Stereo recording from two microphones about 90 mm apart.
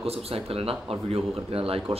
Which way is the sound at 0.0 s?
90° right.